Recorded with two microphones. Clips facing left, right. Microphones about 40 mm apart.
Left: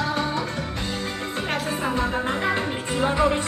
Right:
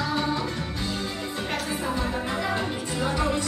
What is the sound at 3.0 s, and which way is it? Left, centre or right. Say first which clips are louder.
Music: left 6 dB; left.